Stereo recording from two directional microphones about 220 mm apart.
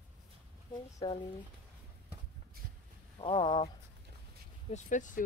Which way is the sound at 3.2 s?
25° left (ahead or behind).